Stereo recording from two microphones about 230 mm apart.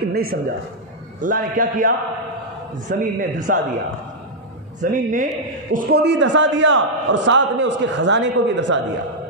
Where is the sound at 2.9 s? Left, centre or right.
Right.